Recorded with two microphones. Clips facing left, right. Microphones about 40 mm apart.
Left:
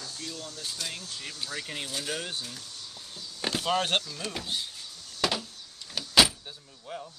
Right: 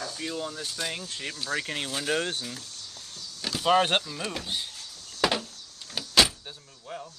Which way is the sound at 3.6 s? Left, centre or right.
Right.